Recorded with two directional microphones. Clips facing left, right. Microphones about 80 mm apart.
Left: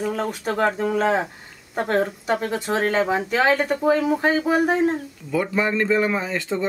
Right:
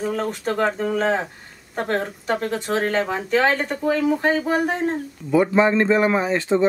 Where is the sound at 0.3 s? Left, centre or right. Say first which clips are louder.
Even; centre.